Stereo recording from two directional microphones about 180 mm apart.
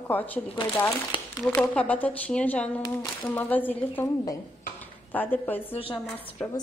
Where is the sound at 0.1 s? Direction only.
10° left (ahead or behind).